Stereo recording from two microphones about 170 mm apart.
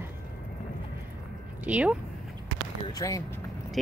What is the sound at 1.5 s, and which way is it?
Speech, 10° right (ahead or behind).